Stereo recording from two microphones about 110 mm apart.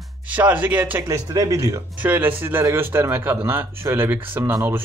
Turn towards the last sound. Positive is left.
turn(degrees=-20)  # may be behind; listen again after turning